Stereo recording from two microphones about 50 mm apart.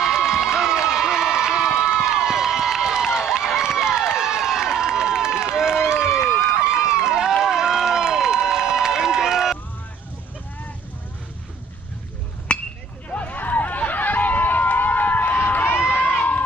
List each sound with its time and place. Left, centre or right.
0.0 s crowd: centre
6.2 s run: left
6.6 s run: centre
12.5 s a sound: left
13.1 s run: left
16.0 s run: left